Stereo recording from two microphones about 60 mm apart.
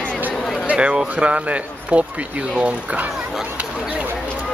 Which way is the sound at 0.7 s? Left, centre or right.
Centre.